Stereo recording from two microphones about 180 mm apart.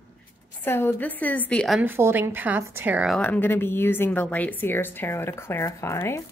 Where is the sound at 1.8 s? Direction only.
10° right (ahead or behind).